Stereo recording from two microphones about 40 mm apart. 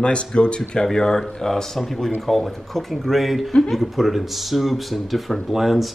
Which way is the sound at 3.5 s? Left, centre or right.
Centre.